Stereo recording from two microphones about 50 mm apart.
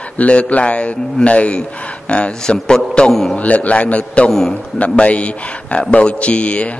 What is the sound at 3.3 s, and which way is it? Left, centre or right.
Speech, left.